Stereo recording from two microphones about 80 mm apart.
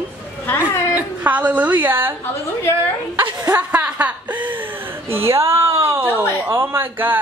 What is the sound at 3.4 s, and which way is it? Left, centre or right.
A woman's voice, right.